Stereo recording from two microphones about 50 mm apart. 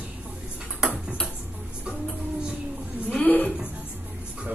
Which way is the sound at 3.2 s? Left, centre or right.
Left.